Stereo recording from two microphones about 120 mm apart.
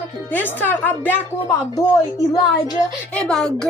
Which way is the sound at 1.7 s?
30° left (ahead or behind).